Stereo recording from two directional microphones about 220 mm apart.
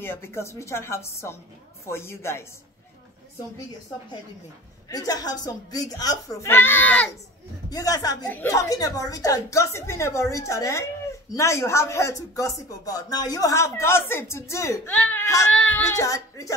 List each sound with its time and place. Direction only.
0.0 s speech: 10° left (ahead or behind)
4.8 s speech: 15° left (ahead or behind)